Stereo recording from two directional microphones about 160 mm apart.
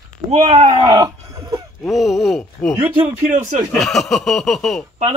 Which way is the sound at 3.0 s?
35° right (ahead or behind).